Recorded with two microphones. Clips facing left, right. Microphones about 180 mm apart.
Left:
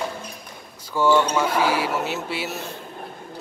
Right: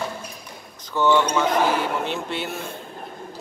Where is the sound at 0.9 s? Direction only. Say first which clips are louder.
Even; 10° left (ahead or behind).